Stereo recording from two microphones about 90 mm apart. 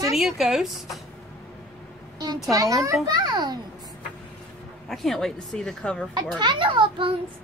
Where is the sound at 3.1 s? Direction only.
50° right (ahead or behind).